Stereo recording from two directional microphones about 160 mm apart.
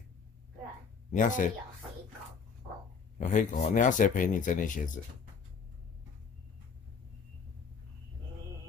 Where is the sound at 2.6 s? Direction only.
50° right (ahead or behind).